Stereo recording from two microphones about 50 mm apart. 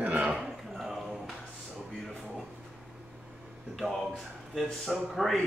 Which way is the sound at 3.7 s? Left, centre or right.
Centre.